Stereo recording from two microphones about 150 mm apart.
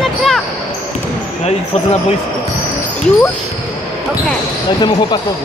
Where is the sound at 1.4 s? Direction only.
45° left (ahead or behind).